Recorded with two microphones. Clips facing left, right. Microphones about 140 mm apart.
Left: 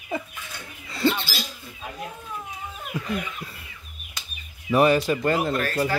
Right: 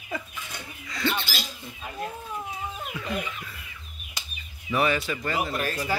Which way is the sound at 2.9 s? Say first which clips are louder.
Left 8 dB; 40° left (ahead or behind).